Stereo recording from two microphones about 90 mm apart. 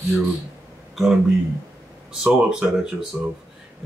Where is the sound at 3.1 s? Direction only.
15° right (ahead or behind).